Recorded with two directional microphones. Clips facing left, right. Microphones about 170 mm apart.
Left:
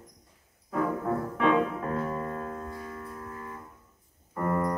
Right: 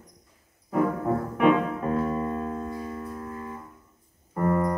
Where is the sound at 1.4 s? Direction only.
20° right (ahead or behind).